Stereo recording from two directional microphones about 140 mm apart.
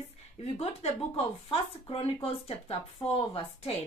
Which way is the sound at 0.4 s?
45° left (ahead or behind).